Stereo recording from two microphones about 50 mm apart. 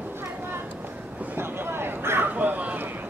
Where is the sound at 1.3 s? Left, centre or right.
Right.